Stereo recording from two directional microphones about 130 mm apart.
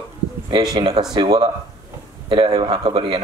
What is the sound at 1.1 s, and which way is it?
Speech, 35° right (ahead or behind).